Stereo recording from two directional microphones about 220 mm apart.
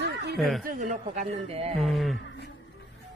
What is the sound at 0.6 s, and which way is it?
Speech, 35° right (ahead or behind).